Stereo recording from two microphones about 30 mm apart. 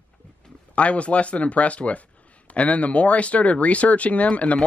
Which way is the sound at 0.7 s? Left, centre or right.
Left.